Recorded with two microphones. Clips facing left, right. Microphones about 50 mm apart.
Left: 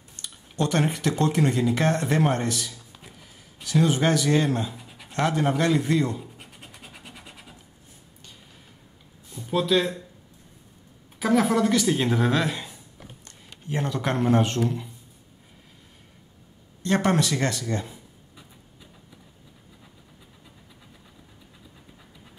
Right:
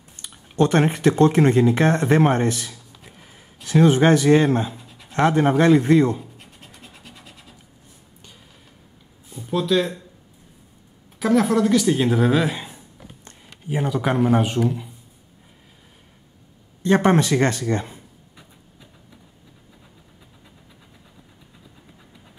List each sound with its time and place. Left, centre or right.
0.1 s a sound: right
0.7 s speech: right
3.1 s a sound: right
3.6 s speech: right
4.8 s a sound: centre
5.1 s speech: right
6.3 s scratch: centre
9.3 s speech: centre
11.1 s speech: centre; by 13.3 s right
13.7 s speech: centre
16.8 s a man's voice: centre
17.1 s speech: right